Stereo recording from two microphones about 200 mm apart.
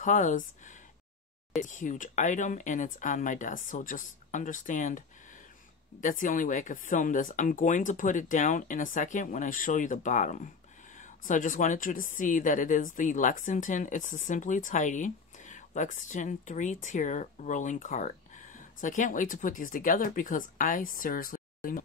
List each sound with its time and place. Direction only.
0.0 s speech: 40° left (ahead or behind)